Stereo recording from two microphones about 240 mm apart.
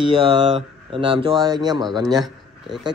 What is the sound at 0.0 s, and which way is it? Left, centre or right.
A man's voice, right.